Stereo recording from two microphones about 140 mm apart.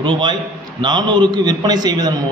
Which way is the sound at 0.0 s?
35° right (ahead or behind).